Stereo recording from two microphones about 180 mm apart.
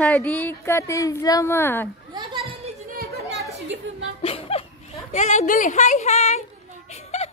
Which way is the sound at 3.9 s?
85° right.